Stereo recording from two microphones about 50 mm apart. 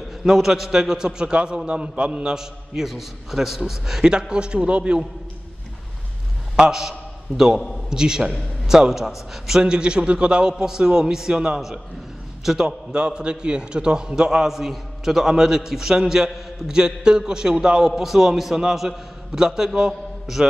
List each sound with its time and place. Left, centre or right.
0.2 s a man's voice: centre; by 2.3 s right
2.3 s a man's voice: centre
6.5 s a man's voice: centre
12.9 s a man's voice: centre
19.9 s a sound: centre